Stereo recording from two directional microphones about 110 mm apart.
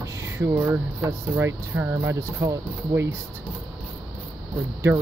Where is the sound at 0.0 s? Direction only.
25° right (ahead or behind).